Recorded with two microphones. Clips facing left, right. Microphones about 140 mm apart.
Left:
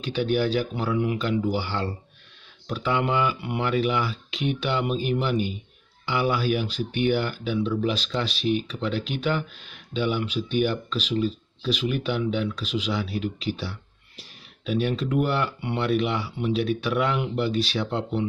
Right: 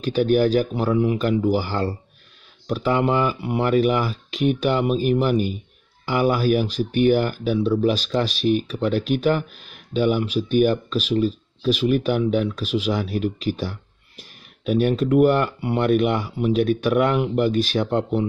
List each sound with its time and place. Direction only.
0.0 s speech: 45° right (ahead or behind)